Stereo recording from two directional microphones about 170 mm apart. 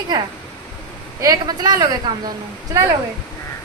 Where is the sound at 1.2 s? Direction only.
20° right (ahead or behind).